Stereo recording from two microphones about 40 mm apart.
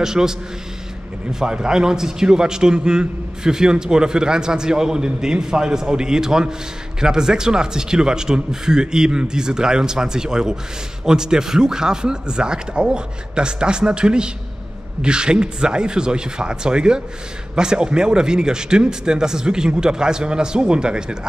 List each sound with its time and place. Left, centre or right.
0.0 s a man's voice: centre
1.4 s a man's voice: right